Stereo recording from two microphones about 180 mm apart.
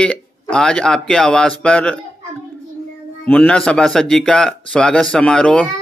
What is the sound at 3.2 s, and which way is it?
A man's voice, 5° left (ahead or behind).